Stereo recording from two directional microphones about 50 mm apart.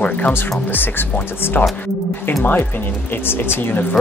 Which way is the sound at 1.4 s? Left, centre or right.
Left.